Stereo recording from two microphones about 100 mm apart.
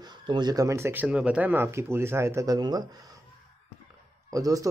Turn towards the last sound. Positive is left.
turn(degrees=-35)  # may be behind; listen again after turning